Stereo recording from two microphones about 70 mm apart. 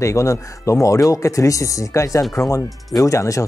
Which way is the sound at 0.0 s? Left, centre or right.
Left.